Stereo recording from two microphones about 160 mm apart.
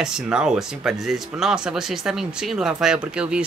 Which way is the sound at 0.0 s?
5° right (ahead or behind).